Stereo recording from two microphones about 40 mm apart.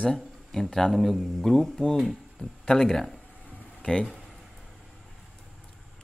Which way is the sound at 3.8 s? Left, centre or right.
Left.